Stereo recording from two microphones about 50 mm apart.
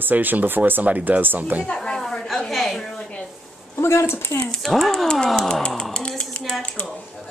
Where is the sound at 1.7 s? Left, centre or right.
Centre.